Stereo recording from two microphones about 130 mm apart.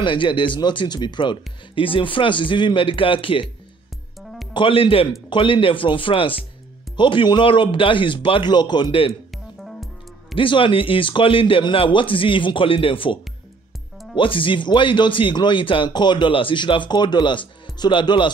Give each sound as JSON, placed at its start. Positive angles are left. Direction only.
{"t": 0.0, "sound": "speech", "side_deg": 40}
{"t": 4.2, "sound": "music", "side_deg": 0}
{"t": 4.6, "sound": "a man's voice", "side_deg": 40}
{"t": 9.3, "sound": "music", "side_deg": 0}
{"t": 10.3, "sound": "speech", "side_deg": 40}